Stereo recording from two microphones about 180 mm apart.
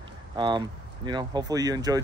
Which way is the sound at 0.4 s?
25° right (ahead or behind).